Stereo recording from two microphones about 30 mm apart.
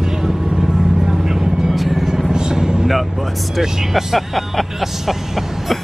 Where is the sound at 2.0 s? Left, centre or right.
Right.